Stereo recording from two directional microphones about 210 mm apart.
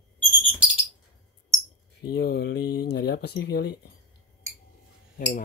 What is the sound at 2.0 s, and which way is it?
Speech, 50° left (ahead or behind).